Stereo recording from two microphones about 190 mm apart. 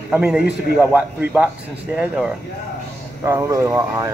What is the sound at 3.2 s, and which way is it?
Speech, 15° right (ahead or behind).